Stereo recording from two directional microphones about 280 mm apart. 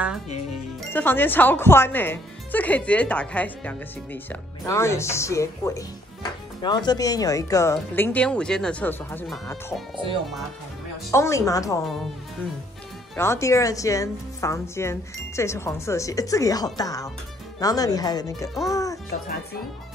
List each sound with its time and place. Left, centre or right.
0.9 s speech: centre
11.1 s speech: centre
13.1 s speech: centre